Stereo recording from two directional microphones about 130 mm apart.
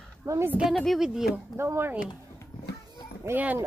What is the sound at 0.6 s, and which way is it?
Speech, centre (ahead or behind).